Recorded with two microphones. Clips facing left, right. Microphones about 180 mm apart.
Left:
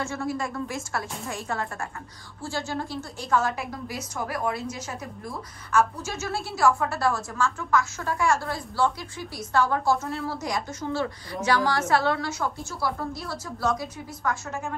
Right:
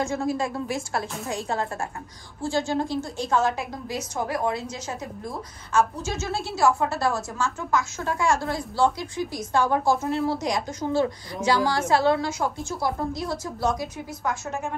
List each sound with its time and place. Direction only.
0.0 s a woman's voice: 15° right (ahead or behind)
1.5 s a woman's voice: 25° right (ahead or behind)
6.6 s a woman's voice: 20° right (ahead or behind)